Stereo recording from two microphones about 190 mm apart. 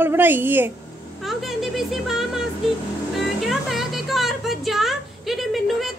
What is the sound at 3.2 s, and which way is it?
Music, centre (ahead or behind).